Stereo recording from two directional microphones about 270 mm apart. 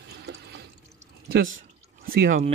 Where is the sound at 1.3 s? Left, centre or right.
Right.